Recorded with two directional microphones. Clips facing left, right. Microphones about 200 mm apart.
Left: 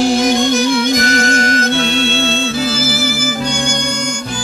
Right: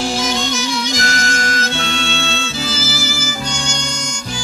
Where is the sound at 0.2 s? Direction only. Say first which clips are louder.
Left 8 dB; 55° left (ahead or behind).